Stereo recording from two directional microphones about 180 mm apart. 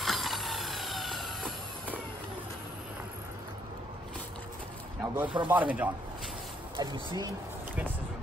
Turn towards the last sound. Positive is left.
turn(degrees=-25)  # may be behind; listen again after turning